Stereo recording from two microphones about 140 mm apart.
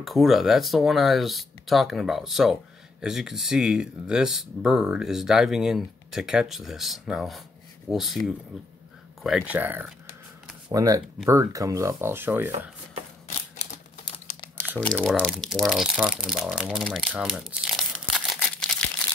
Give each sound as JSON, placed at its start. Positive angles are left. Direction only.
{"t": 0.0, "sound": "speech", "side_deg": 0}
{"t": 9.6, "sound": "speech", "side_deg": -15}
{"t": 10.7, "sound": "speech", "side_deg": -25}
{"t": 13.6, "sound": "typewriter", "side_deg": 60}
{"t": 14.8, "sound": "speech", "side_deg": 10}
{"t": 17.2, "sound": "crumpling", "side_deg": 0}